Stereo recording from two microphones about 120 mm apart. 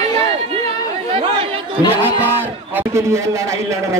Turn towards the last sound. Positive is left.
turn(degrees=-25)  # may be behind; listen again after turning